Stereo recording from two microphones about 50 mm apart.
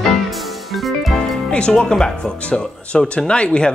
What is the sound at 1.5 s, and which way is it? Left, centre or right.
Speech, centre.